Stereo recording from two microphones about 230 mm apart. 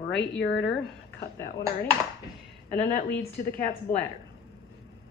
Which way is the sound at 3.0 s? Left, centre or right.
Left.